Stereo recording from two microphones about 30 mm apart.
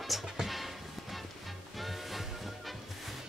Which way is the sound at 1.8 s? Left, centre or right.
Centre.